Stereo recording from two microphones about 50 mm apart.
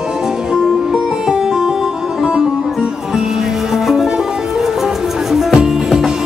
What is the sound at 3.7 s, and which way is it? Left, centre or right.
Music, centre.